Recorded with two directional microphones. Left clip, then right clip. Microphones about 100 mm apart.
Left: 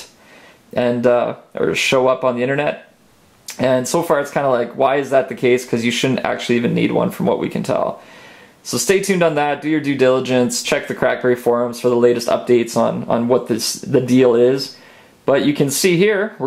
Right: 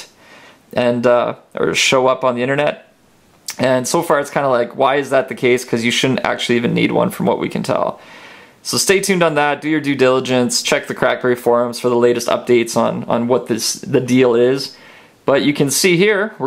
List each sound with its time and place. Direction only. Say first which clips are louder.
0.7 s speech: right 1 dB; 30° right (ahead or behind)